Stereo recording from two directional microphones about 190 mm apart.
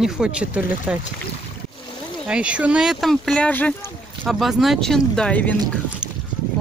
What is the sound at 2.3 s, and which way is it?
Speech, 5° right (ahead or behind).